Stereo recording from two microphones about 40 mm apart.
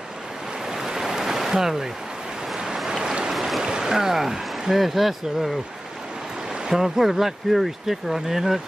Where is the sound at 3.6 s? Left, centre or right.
Centre.